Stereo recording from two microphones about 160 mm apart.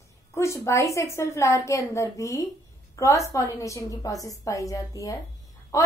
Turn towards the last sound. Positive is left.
turn(degrees=20)  # may be behind; listen again after turning